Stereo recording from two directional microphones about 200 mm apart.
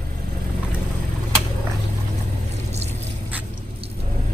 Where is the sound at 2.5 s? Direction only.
35° right (ahead or behind).